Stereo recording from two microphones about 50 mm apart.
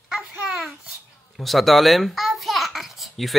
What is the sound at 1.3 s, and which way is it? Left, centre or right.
Babbling, centre.